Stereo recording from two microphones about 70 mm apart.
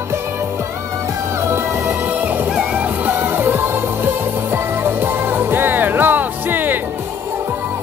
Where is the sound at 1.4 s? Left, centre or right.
Right.